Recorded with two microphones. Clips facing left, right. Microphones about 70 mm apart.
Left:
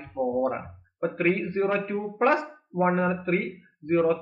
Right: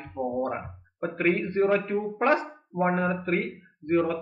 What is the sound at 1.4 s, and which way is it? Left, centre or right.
Speech, centre.